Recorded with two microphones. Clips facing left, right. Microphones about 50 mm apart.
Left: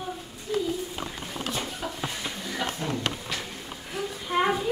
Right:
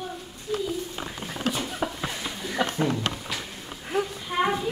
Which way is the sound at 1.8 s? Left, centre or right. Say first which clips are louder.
Right 5 dB; right.